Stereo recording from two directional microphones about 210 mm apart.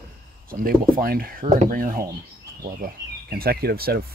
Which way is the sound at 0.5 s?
45° right (ahead or behind).